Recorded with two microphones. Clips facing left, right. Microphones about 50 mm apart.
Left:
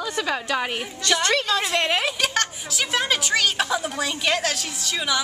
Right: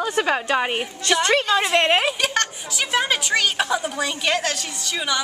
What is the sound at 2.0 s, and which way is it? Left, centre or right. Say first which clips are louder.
A woman's voice: right 2 dB; centre.